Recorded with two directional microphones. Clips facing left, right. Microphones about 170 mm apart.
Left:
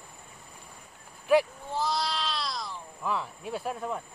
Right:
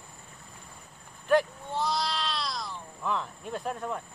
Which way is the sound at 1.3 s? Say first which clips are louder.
Left 1 dB; 5° left (ahead or behind).